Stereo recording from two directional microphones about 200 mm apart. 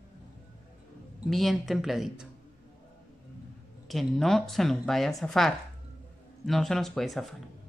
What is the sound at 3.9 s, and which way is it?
A woman's voice, centre (ahead or behind).